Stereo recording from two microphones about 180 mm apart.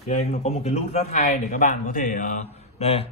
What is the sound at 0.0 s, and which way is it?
A man's voice, 40° left (ahead or behind).